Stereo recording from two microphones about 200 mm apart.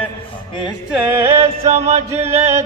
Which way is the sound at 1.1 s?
15° right (ahead or behind).